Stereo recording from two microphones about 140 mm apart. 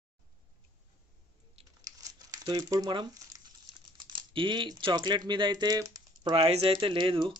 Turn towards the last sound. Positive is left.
turn(degrees=-35)  # may be behind; listen again after turning